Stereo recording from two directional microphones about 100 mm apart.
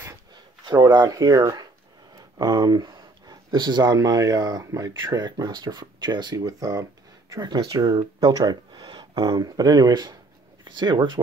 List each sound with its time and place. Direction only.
0.7 s speech: 45° right (ahead or behind)
2.1 s a sound: 40° right (ahead or behind)
2.9 s speech: 45° right (ahead or behind)